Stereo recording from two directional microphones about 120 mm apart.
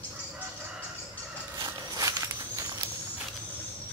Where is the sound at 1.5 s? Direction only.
35° right (ahead or behind).